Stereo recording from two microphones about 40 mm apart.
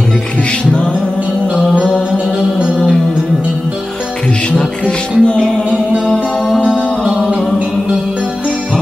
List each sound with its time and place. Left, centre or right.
4.8 s music: left
7.2 s music: right